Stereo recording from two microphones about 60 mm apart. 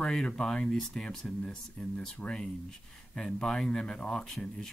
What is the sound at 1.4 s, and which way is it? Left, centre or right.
Speech, centre.